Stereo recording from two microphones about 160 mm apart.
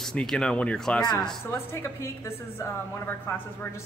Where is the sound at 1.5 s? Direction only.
15° left (ahead or behind).